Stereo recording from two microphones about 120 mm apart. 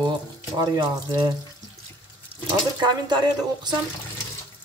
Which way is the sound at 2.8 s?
35° right (ahead or behind).